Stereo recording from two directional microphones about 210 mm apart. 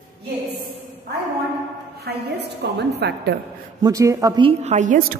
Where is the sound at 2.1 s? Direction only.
50° right (ahead or behind).